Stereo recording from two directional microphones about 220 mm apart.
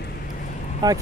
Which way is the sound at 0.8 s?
20° right (ahead or behind).